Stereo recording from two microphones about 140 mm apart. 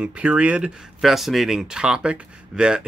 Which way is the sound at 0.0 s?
10° right (ahead or behind).